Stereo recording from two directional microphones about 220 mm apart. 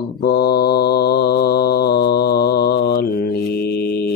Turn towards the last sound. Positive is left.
turn(degrees=45)  # may be behind; listen again after turning